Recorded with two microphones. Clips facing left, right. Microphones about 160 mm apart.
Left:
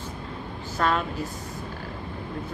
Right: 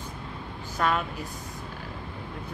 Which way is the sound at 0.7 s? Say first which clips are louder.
Left 2 dB; 15° right (ahead or behind).